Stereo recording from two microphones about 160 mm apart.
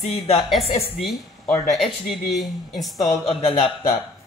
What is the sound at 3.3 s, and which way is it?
Speech, 40° left (ahead or behind).